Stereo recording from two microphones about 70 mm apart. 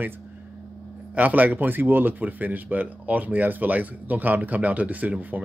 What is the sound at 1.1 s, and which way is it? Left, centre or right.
Speech, right.